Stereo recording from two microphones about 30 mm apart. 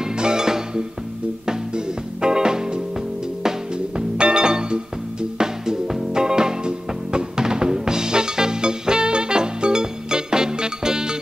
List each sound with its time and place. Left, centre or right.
0.0 s music: right
2.2 s music: right
5.4 s music: centre